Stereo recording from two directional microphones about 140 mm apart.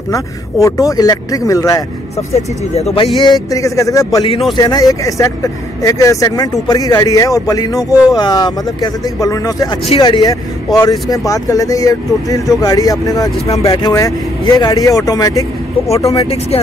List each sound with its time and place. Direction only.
0.1 s speech: 25° left (ahead or behind)
2.3 s speech: 50° left (ahead or behind)
3.4 s speech: 25° left (ahead or behind)
9.8 s speech: 40° left (ahead or behind)
16.2 s speech: 45° left (ahead or behind)